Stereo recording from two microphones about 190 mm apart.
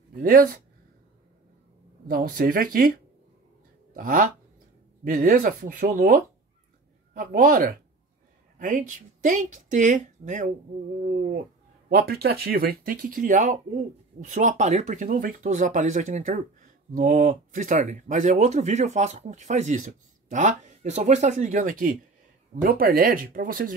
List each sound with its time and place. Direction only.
0.1 s speech: 50° right (ahead or behind)
2.0 s a woman's voice: 50° right (ahead or behind)
3.9 s a woman's voice: 45° right (ahead or behind)
11.9 s a woman's voice: 55° right (ahead or behind)